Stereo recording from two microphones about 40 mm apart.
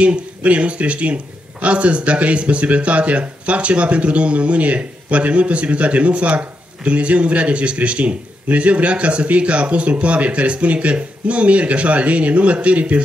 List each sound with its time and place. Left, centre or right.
0.0 s speech: right